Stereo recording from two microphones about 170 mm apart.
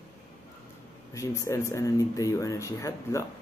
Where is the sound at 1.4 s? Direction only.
15° left (ahead or behind).